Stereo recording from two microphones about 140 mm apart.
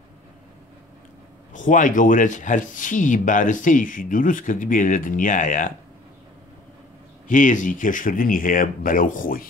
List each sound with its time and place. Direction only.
1.5 s speech: 65° left (ahead or behind)
7.2 s speech: 65° left (ahead or behind); by 9.5 s 85° left